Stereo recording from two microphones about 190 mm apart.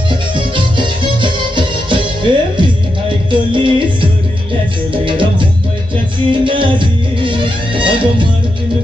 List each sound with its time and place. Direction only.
0.1 s music: 25° right (ahead or behind)